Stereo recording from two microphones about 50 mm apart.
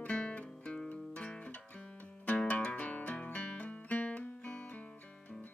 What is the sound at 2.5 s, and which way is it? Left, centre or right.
Music, left.